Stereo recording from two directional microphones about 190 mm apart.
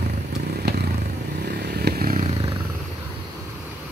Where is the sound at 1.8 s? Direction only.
55° right (ahead or behind).